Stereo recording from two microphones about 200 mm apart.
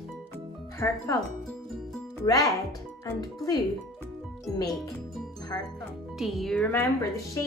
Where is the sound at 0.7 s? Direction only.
15° left (ahead or behind).